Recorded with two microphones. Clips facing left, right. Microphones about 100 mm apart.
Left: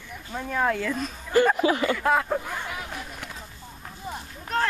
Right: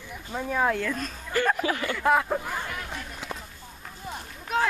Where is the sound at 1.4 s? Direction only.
15° left (ahead or behind).